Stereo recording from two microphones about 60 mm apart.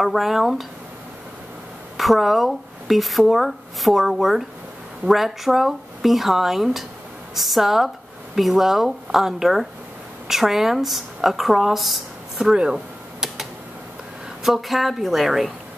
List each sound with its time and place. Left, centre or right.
0.0 s speech: centre
2.0 s speech: centre
12.4 s a sound: centre
14.4 s speech: centre